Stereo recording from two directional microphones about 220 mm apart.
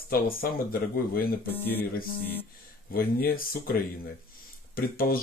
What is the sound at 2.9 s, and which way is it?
Speech, 40° left (ahead or behind).